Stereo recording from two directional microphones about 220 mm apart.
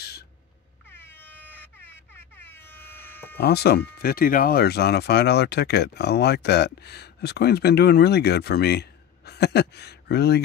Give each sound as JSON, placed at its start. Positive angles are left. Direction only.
{"t": 0.9, "sound": "air horn", "side_deg": 10}
{"t": 3.3, "sound": "speech", "side_deg": 45}